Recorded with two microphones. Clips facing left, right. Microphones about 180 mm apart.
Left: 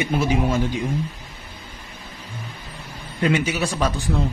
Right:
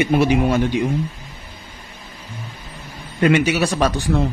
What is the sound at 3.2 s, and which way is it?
Speech, 70° right (ahead or behind).